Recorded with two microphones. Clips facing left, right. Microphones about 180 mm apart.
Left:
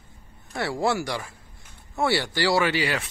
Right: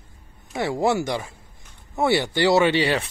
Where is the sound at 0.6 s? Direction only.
20° right (ahead or behind).